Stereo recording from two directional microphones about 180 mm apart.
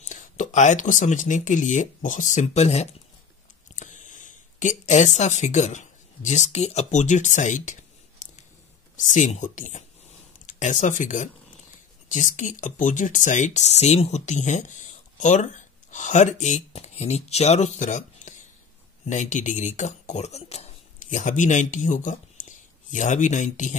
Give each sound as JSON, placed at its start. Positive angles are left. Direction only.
{"t": 0.1, "sound": "speech", "side_deg": 45}